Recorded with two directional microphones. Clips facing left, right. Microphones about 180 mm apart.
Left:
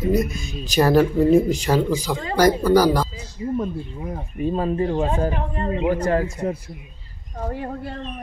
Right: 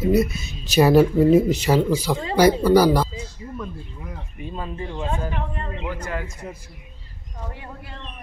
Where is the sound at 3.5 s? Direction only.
45° left (ahead or behind).